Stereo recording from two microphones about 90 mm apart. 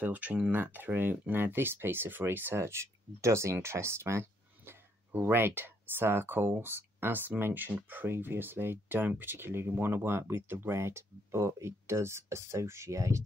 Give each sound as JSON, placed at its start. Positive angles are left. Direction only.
{"t": 0.0, "sound": "speech", "side_deg": -20}